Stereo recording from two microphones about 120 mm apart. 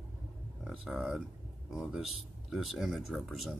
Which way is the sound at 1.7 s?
5° right (ahead or behind).